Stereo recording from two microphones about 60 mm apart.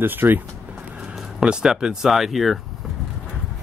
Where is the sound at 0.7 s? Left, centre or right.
Centre.